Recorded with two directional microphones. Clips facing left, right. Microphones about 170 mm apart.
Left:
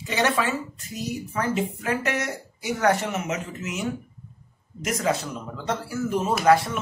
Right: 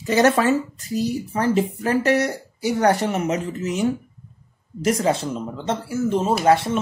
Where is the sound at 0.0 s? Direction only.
40° right (ahead or behind).